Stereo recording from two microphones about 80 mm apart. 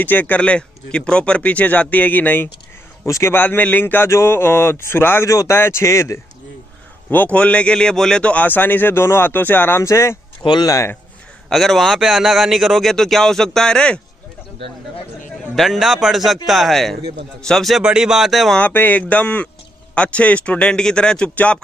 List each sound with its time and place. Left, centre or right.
0.0 s speech: left
3.1 s speech: left
3.3 s speech: left
7.3 s speech: centre; by 10.1 s left
10.4 s speech: left
11.4 s a man's voice: centre
15.5 s a man's voice: centre
17.8 s a man's voice: centre
18.6 s speech: left